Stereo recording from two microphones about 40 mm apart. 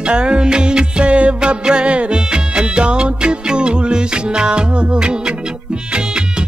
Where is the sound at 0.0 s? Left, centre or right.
Right.